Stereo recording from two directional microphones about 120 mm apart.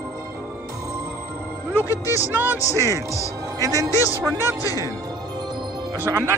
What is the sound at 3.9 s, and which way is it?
Speech, 25° left (ahead or behind).